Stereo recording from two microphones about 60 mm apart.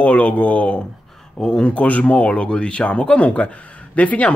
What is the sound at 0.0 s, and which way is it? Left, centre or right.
Speech, left.